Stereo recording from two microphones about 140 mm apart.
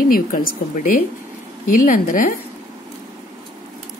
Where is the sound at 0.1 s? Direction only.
90° left.